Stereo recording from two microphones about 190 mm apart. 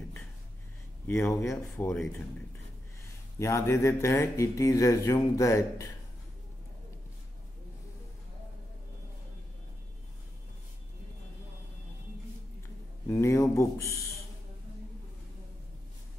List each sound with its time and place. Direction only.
1.0 s speech: 15° left (ahead or behind)
13.1 s speech: 15° left (ahead or behind)